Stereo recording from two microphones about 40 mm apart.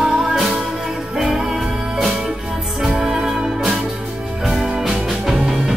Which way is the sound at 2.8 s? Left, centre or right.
Centre.